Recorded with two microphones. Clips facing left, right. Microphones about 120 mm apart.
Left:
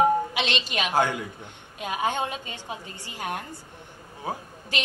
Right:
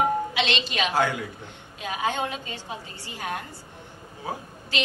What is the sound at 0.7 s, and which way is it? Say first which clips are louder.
A woman's voice: left 1 dB; 15° left (ahead or behind).